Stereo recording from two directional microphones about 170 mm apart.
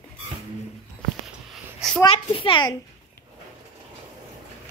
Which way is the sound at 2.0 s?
30° left (ahead or behind).